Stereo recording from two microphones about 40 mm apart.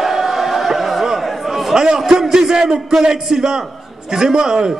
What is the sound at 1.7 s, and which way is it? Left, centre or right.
A man's voice, centre.